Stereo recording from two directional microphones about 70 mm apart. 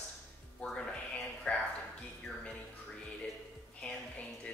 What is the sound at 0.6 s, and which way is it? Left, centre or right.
Music, centre.